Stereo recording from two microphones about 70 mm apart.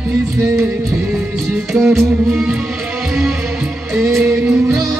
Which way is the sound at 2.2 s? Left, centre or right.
Centre.